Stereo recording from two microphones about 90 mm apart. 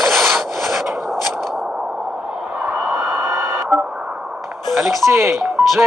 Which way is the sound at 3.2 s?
30° right (ahead or behind).